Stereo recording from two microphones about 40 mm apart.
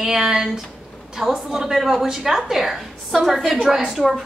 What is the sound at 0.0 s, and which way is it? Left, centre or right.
A woman's voice, centre.